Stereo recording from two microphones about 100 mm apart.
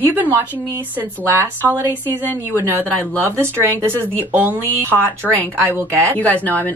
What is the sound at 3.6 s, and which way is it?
Speech, 25° right (ahead or behind).